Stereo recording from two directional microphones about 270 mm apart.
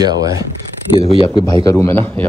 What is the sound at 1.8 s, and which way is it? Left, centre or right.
Speech, centre.